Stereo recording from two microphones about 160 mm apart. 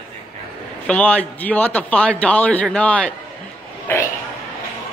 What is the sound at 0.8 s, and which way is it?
A man's voice, 10° left (ahead or behind).